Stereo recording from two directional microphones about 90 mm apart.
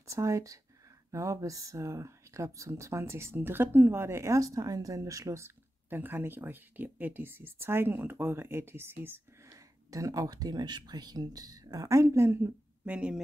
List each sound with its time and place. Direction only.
0.0 s speech: 35° right (ahead or behind)
9.8 s speech: 40° right (ahead or behind)
12.8 s speech: 15° right (ahead or behind)